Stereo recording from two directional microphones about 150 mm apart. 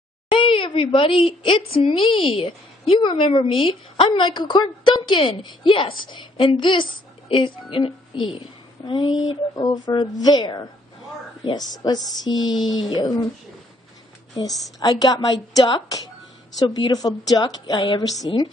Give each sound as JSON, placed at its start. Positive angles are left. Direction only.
{"t": 0.3, "sound": "a woman's voice", "side_deg": 35}
{"t": 14.8, "sound": "speech", "side_deg": 25}